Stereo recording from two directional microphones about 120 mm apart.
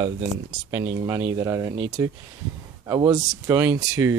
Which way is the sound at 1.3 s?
25° right (ahead or behind).